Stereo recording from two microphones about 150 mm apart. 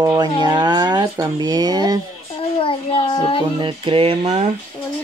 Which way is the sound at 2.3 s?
40° left (ahead or behind).